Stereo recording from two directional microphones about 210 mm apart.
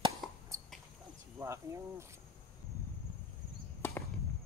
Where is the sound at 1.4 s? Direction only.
15° right (ahead or behind).